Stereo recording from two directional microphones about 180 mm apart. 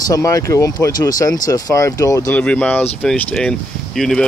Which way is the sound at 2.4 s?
5° left (ahead or behind).